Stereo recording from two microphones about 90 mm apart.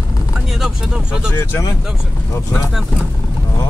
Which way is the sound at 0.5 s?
5° right (ahead or behind).